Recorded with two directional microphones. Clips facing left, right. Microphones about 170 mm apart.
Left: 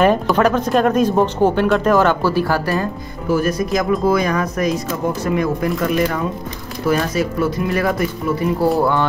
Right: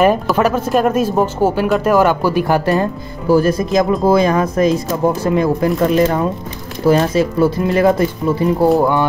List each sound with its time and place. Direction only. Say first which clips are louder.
0.0 s speech: right 1 dB; 5° right (ahead or behind); by 8.6 s 25° right (ahead or behind)